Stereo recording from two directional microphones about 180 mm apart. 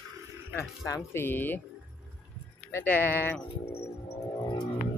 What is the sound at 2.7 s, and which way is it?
Speech, 10° left (ahead or behind).